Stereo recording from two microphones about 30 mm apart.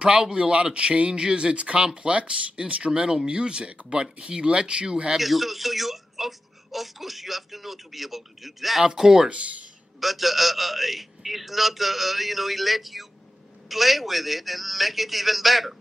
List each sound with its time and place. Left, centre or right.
0.0 s speech: right
5.1 s speech: centre
8.8 s speech: centre
9.9 s speech: centre